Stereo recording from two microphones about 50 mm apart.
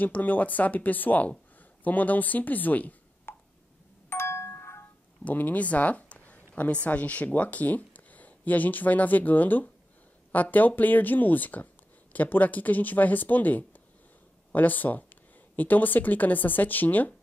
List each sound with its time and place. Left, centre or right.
0.0 s speech: left
3.3 s plop: left
4.1 s doorbell: left
5.2 s a woman's voice: left